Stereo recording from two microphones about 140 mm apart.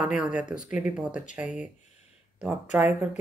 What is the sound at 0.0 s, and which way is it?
Speech, 5° right (ahead or behind).